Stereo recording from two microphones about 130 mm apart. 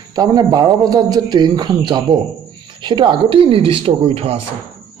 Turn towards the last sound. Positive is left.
turn(degrees=-50)  # may be behind; listen again after turning